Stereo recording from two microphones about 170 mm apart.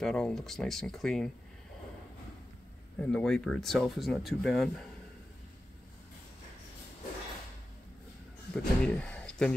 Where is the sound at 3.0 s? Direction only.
5° left (ahead or behind).